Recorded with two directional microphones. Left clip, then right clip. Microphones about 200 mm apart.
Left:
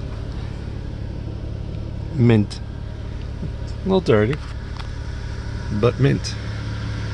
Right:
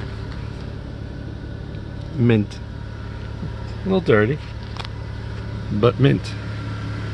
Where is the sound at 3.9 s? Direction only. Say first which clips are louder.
Even; 15° left (ahead or behind).